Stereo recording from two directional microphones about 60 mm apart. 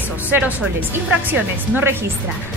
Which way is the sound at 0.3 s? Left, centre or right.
Right.